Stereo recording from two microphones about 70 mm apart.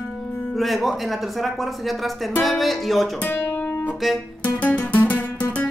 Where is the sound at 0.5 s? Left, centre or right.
Centre.